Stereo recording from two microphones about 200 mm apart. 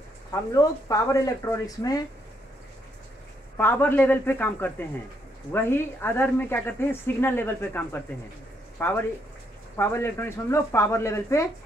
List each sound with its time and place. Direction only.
0.3 s speech: 15° left (ahead or behind)
3.5 s speech: 10° left (ahead or behind)